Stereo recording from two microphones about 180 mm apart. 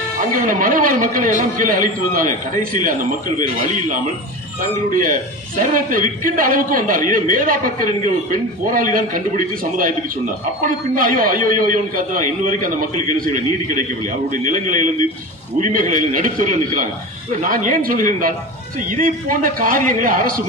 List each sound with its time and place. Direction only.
0.3 s a man's voice: 50° right (ahead or behind)